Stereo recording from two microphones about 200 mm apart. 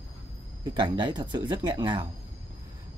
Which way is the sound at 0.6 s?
25° right (ahead or behind).